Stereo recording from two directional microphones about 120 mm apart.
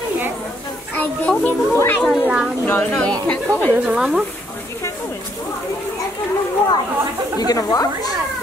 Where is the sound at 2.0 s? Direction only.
10° right (ahead or behind).